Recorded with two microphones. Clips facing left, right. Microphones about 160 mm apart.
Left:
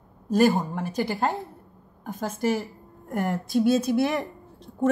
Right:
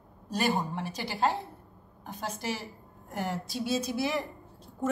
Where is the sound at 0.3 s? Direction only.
45° left (ahead or behind).